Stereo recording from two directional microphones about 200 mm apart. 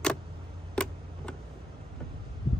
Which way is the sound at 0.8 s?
5° left (ahead or behind).